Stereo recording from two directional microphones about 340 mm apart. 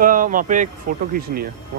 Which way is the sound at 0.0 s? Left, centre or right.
Right.